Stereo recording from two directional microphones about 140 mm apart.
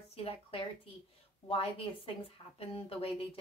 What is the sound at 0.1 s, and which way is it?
A woman's voice, 45° left (ahead or behind).